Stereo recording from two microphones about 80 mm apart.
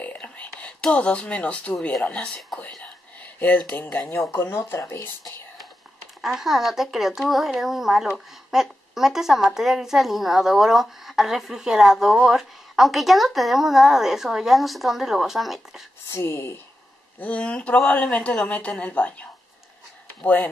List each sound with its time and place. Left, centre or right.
0.0 s speech: centre
2.8 s whispering: centre
4.2 s speech: left
6.2 s speech: centre
16.1 s speech: left
17.2 s speech: centre